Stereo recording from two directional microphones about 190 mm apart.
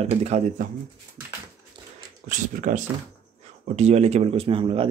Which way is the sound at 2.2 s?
40° right (ahead or behind).